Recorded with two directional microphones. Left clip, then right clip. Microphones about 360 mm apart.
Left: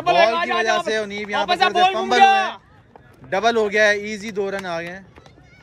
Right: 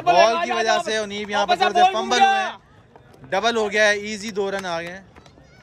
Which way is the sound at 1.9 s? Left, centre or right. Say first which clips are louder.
Left 3 dB; centre.